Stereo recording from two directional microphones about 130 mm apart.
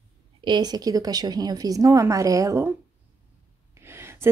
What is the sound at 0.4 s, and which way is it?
A woman's voice, 35° right (ahead or behind).